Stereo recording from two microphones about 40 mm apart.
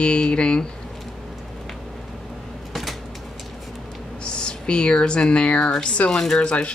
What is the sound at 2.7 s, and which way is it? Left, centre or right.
Cupboard open or close, centre.